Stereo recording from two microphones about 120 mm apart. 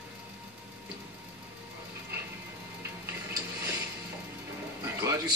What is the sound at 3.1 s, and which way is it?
Music, 25° right (ahead or behind).